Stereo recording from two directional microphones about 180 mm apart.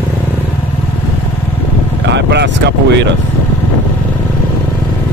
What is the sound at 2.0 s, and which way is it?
Vehicle, 75° right (ahead or behind).